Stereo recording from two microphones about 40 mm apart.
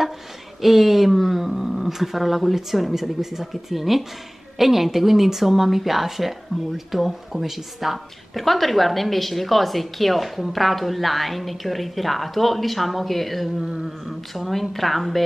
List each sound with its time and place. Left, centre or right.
0.6 s a woman's voice: centre
13.6 s a sound: centre
13.8 s a woman's voice: centre